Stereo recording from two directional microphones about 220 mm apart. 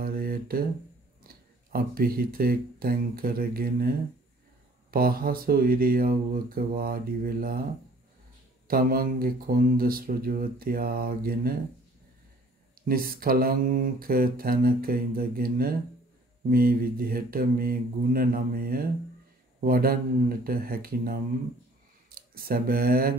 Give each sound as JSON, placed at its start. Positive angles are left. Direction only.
{"t": 0.0, "sound": "mantra", "side_deg": -40}
{"t": 1.2, "sound": "speech", "side_deg": -45}
{"t": 4.9, "sound": "mantra", "side_deg": -40}
{"t": 8.6, "sound": "mantra", "side_deg": -40}
{"t": 12.8, "sound": "mantra", "side_deg": -40}
{"t": 19.6, "sound": "speech", "side_deg": -40}